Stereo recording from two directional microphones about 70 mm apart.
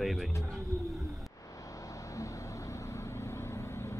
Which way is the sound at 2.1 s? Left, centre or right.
Left.